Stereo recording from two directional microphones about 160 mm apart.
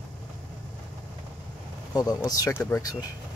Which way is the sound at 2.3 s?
20° left (ahead or behind).